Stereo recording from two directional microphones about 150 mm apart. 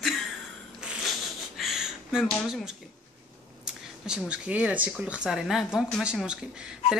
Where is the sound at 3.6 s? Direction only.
5° right (ahead or behind).